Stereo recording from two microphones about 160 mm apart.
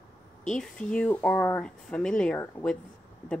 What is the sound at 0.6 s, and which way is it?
Speech, 5° left (ahead or behind).